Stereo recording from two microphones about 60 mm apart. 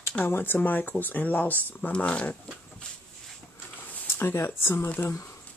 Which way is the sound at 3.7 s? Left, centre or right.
Left.